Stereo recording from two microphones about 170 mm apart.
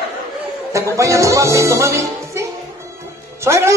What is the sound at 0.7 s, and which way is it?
Music, 20° right (ahead or behind).